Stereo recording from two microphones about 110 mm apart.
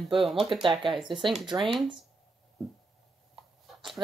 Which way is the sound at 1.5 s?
25° right (ahead or behind).